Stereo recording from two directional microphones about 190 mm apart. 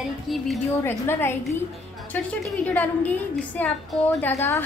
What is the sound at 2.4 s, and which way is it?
A woman's voice, 10° left (ahead or behind).